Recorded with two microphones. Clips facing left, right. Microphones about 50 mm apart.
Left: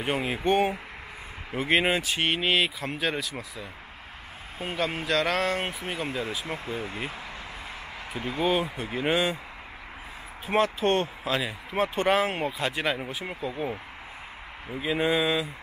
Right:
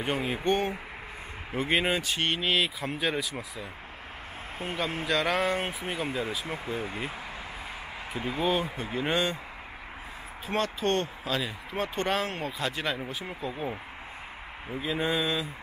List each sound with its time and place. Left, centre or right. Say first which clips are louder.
0.0 s speech: left 2 dB; centre
5.0 s speech: even; centre
10.4 s speech: left 5 dB; centre
14.7 s speech: left 3 dB; centre